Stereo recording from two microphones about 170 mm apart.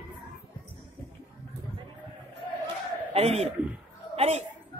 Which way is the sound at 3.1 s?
40° right (ahead or behind).